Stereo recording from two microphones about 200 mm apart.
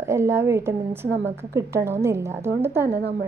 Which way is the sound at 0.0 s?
10° right (ahead or behind).